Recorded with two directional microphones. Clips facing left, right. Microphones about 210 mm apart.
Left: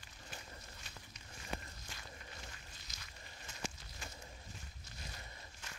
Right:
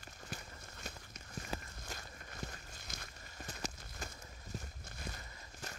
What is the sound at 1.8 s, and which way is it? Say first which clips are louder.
Walk: right 6 dB; 45° right (ahead or behind).